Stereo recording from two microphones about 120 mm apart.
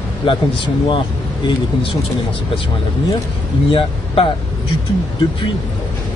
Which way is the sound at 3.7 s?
50° left (ahead or behind).